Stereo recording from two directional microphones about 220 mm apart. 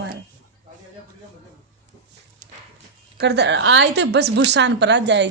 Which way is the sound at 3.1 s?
50° right (ahead or behind).